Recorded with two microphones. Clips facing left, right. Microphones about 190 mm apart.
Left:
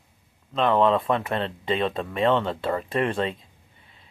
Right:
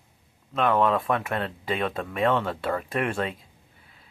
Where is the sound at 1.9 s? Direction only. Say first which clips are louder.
Even; centre (ahead or behind).